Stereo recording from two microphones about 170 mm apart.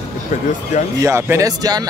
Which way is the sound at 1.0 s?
15° right (ahead or behind).